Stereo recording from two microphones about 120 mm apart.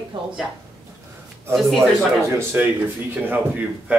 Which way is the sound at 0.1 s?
45° right (ahead or behind).